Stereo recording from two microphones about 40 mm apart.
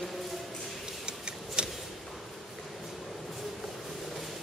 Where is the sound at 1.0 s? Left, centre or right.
Right.